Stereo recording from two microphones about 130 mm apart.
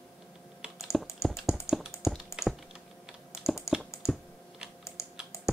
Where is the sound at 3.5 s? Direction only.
20° left (ahead or behind).